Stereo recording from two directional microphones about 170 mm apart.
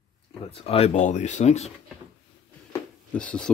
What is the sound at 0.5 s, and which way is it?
Speech, 35° left (ahead or behind).